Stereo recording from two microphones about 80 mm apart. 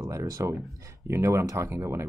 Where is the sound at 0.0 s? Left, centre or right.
Right.